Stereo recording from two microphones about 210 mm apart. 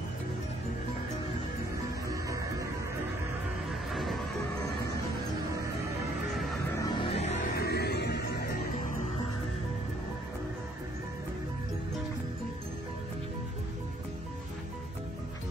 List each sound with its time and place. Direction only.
2.2 s music: 15° right (ahead or behind)
3.9 s music: centre (ahead or behind)
6.8 s music: 25° left (ahead or behind)
7.4 s music: 50° left (ahead or behind)